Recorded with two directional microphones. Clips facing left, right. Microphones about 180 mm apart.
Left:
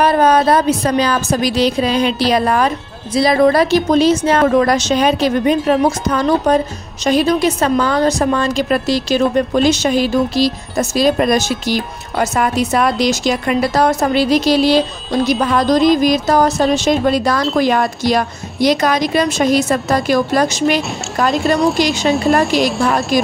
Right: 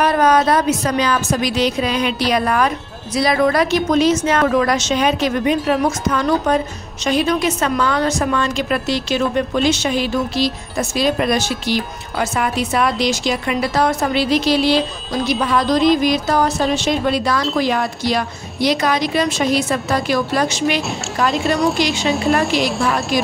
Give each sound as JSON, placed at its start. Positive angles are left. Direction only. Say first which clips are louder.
{"t": 0.0, "sound": "a woman's voice", "louder": "left 2 dB", "side_deg": 30}
{"t": 21.5, "sound": "speech", "louder": "left 3 dB", "side_deg": 0}
{"t": 23.1, "sound": "speech", "louder": "left 4 dB", "side_deg": 45}